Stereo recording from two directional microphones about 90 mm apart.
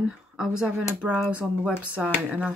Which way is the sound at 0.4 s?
5° right (ahead or behind).